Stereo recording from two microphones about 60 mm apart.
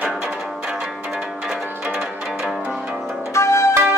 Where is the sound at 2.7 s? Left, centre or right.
Centre.